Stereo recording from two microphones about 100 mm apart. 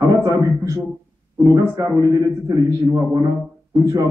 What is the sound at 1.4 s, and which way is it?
A man's voice, 35° right (ahead or behind).